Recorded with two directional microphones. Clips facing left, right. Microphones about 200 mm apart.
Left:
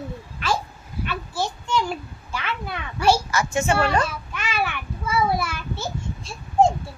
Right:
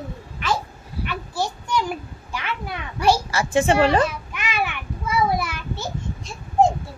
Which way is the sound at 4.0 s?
15° right (ahead or behind).